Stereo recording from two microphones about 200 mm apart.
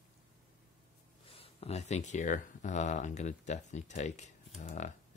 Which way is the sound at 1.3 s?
30° left (ahead or behind).